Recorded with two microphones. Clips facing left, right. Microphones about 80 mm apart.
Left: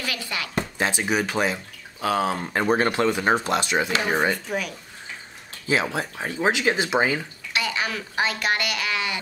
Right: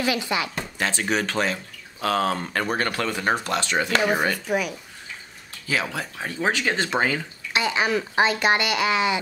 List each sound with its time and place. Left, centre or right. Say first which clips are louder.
0.0 s speech: right 6 dB; right
0.7 s speech: even; centre
2.6 s speech: left 7 dB; left
4.5 s speech: right 4 dB; centre
5.7 s speech: left 3 dB; left
7.5 s speech: right 4 dB; right